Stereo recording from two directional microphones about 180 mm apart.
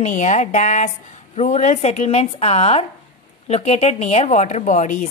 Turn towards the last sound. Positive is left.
turn(degrees=45)  # may be behind; listen again after turning